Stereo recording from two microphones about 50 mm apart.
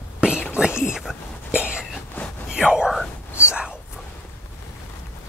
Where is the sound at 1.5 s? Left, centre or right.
Right.